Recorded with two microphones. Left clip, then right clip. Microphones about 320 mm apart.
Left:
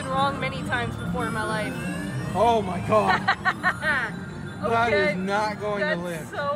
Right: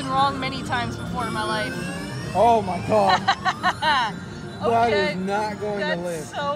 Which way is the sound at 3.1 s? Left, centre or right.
Centre.